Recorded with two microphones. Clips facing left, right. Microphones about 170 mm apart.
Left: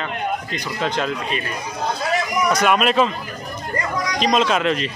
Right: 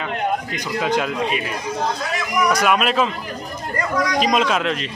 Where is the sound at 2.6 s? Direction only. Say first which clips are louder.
Left 1 dB; centre (ahead or behind).